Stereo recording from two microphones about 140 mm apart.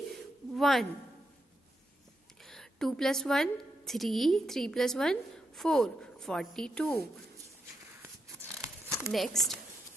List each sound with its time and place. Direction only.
0.1 s a sound: centre (ahead or behind)
2.4 s a woman's voice: centre (ahead or behind)
8.4 s tearing: 20° right (ahead or behind)
9.1 s speech: centre (ahead or behind)